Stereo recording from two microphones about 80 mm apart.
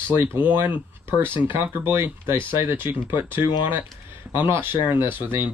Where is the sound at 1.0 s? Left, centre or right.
Right.